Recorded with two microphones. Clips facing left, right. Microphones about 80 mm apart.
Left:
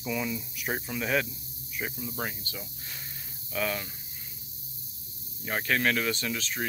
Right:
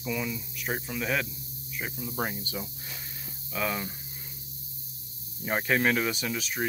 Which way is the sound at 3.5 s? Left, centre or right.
Centre.